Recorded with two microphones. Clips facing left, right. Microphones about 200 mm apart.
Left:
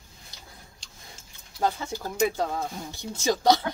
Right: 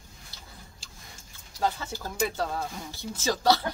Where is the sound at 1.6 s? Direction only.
15° left (ahead or behind).